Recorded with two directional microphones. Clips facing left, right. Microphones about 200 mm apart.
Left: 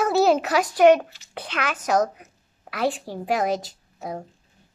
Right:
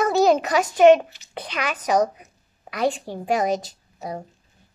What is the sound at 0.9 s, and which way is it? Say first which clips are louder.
A child's voice: right 2 dB; 20° right (ahead or behind).